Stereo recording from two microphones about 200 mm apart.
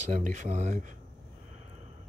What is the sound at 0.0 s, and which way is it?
Speech, 40° right (ahead or behind).